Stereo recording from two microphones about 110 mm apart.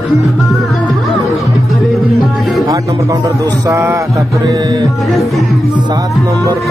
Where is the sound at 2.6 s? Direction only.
30° right (ahead or behind).